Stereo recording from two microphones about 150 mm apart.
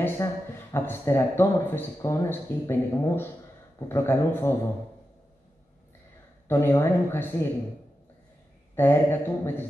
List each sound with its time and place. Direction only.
0.0 s speech: 15° left (ahead or behind)
6.4 s speech: 15° left (ahead or behind)
8.7 s speech: 15° left (ahead or behind)